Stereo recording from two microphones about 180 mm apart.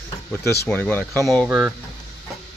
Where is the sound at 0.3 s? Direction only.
10° left (ahead or behind).